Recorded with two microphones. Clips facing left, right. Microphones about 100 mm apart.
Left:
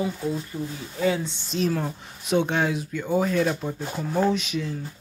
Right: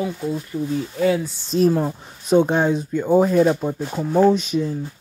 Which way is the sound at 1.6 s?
20° right (ahead or behind).